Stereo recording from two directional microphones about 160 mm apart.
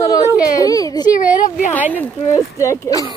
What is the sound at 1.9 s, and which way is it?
Speech, 10° left (ahead or behind).